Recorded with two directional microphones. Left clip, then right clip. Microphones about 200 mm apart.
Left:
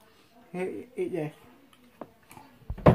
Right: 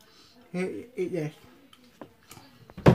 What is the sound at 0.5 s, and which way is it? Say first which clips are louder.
Speech: right 1 dB; centre (ahead or behind).